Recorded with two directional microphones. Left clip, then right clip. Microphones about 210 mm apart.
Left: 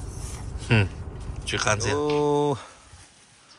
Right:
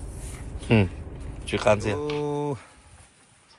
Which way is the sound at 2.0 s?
5° left (ahead or behind).